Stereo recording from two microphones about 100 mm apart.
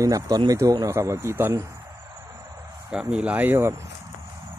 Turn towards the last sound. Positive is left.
turn(degrees=-20)  # may be behind; listen again after turning